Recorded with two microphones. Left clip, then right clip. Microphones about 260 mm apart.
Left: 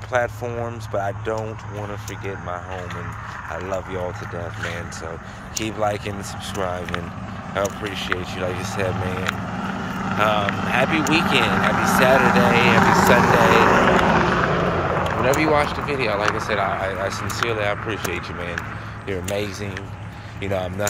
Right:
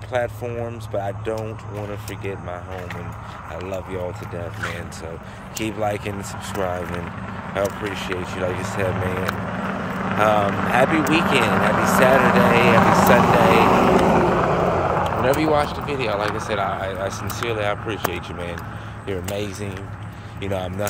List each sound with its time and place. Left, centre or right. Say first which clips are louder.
0.1 s speech: left 2 dB; centre
5.6 s speech: left 1 dB; centre; by 12.0 s right
12.4 s speech: right 1 dB; centre
13.2 s vehicle: even; right
15.4 s speech: left 1 dB; centre